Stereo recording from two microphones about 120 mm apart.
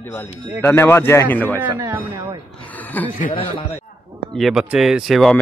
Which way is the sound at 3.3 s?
55° left (ahead or behind).